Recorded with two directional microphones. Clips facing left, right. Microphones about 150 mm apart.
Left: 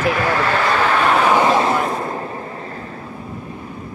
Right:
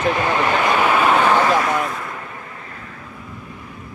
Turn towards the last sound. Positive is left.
turn(degrees=35)  # may be behind; listen again after turning